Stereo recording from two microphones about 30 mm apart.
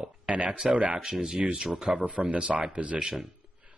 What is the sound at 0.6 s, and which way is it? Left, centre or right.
Speech, centre.